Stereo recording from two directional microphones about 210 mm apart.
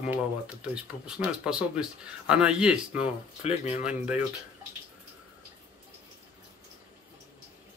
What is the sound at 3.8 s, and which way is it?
Speech, 5° right (ahead or behind).